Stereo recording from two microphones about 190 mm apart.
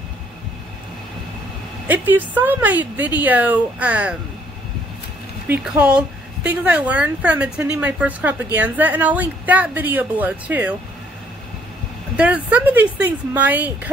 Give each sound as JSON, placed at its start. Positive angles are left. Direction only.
{"t": 1.9, "sound": "a woman's voice", "side_deg": -10}
{"t": 5.5, "sound": "a woman's voice", "side_deg": -5}
{"t": 12.2, "sound": "a woman's voice", "side_deg": -5}